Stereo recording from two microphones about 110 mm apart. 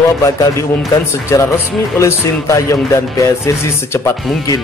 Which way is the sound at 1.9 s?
25° left (ahead or behind).